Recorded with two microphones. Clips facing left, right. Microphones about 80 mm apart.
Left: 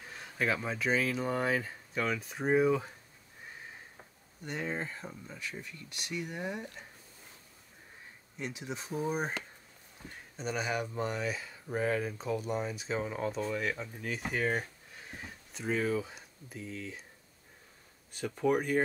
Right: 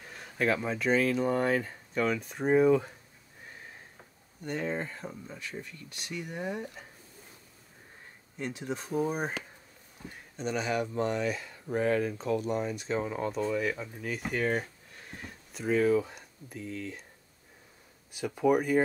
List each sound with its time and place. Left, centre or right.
0.0 s speech: centre
4.5 s speech: centre
8.4 s speech: centre
18.1 s speech: centre